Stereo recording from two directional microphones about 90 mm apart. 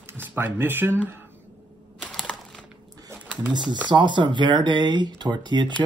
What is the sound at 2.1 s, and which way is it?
Computer keyboard, 5° left (ahead or behind).